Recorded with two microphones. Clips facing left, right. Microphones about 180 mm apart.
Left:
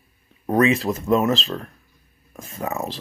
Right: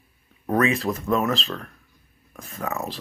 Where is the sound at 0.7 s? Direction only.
Centre (ahead or behind).